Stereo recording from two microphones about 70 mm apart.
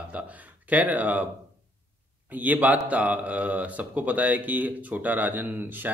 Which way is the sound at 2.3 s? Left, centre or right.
Right.